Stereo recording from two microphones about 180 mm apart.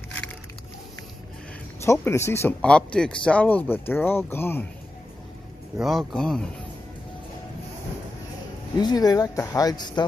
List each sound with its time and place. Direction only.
1.9 s speech: 15° left (ahead or behind)
5.8 s a man's voice: centre (ahead or behind)
8.7 s speech: 20° left (ahead or behind)